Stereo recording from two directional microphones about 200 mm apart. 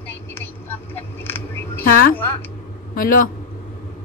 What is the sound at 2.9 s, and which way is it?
Speech, 45° left (ahead or behind).